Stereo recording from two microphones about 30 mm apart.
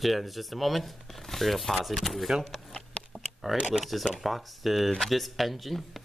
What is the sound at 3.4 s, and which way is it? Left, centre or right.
Speech, centre.